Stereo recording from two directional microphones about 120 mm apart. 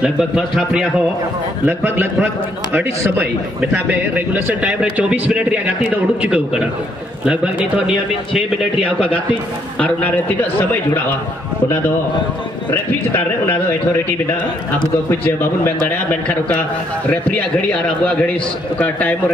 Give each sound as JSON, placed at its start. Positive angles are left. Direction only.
{"t": 1.7, "sound": "a man's voice", "side_deg": -15}
{"t": 8.8, "sound": "a man's voice", "side_deg": 10}
{"t": 15.0, "sound": "a man's voice", "side_deg": 20}